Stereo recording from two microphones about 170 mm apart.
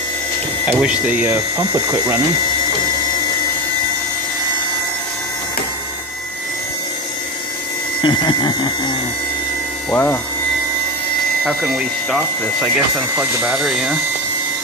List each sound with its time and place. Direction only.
0.7 s speech: 10° right (ahead or behind)
8.0 s a sound: 25° left (ahead or behind)
9.8 s speech: 10° left (ahead or behind)
12.7 s speech: 5° right (ahead or behind)